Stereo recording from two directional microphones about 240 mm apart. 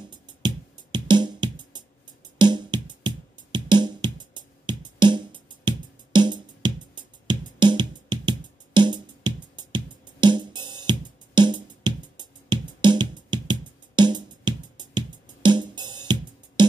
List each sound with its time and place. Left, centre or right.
0.1 s music: centre